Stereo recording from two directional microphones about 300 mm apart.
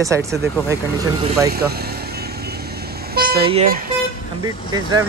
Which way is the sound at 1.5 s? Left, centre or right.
Right.